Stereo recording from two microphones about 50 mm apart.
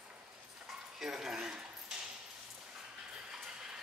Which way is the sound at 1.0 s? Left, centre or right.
Centre.